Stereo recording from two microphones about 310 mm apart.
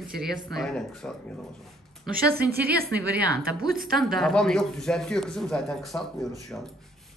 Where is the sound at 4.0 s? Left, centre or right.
Centre.